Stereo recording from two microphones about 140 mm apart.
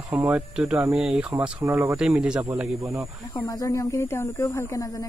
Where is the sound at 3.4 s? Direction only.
25° left (ahead or behind).